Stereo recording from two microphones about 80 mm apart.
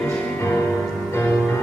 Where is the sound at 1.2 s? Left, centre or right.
Centre.